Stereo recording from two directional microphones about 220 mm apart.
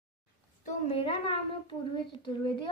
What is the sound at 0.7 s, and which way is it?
A woman's voice, 25° left (ahead or behind).